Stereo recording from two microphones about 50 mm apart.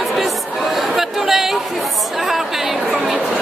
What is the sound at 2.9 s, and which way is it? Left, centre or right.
Speech, centre.